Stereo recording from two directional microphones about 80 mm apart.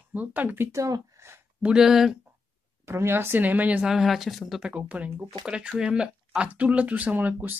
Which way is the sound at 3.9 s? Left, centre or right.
Centre.